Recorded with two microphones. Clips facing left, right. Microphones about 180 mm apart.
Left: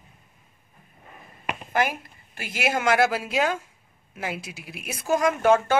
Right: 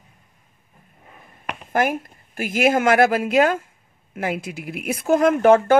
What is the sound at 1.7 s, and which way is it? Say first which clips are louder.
A woman's voice: right 5 dB; 45° right (ahead or behind).